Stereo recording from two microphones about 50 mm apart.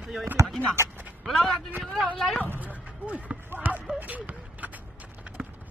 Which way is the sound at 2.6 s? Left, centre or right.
Right.